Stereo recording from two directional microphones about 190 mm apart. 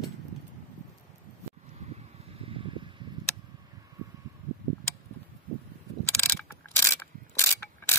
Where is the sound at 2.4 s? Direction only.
30° right (ahead or behind).